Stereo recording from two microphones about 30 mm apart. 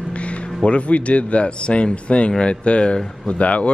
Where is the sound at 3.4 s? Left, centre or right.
Left.